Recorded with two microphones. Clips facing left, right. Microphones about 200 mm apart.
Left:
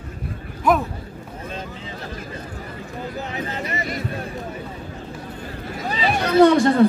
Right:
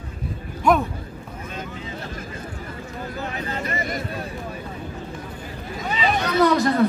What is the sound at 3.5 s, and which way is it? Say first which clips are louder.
Chatter: even; 20° left (ahead or behind).